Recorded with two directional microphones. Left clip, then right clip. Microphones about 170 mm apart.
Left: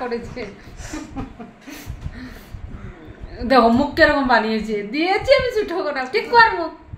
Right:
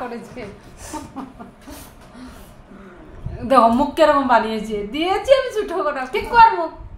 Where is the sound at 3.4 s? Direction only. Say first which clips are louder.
Right 1 dB; 20° left (ahead or behind).